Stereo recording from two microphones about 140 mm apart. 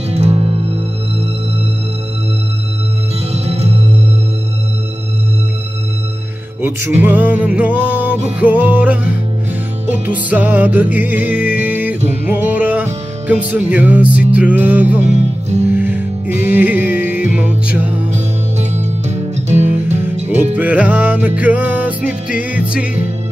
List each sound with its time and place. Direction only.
0.1 s music: 50° right (ahead or behind)
3.4 s music: 50° right (ahead or behind)
6.6 s music: 15° right (ahead or behind)
18.1 s music: 55° right (ahead or behind)
20.5 s music: 10° right (ahead or behind)